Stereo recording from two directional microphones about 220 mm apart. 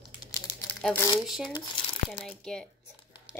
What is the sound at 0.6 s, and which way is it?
Crumpling, 5° left (ahead or behind).